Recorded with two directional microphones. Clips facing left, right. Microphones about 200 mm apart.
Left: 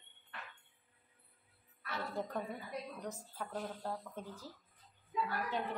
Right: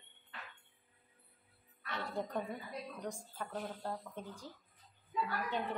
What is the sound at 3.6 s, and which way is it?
Speech, 5° right (ahead or behind).